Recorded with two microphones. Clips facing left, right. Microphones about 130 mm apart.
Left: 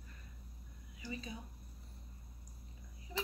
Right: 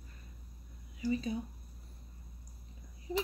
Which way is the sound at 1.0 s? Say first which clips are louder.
Right 12 dB; 35° right (ahead or behind).